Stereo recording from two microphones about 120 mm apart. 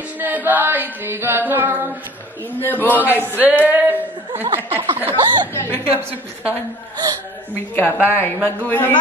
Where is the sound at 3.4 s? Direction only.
15° right (ahead or behind).